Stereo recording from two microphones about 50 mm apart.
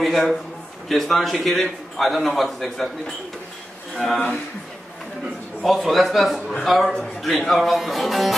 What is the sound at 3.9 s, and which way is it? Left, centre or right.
Speech, centre.